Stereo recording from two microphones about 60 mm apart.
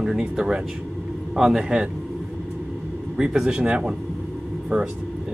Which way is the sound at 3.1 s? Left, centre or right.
Centre.